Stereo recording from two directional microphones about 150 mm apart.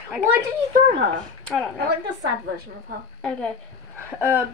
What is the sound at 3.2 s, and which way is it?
Speech, 5° left (ahead or behind).